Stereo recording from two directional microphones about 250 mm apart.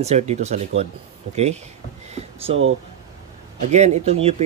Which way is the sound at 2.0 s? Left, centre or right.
Right.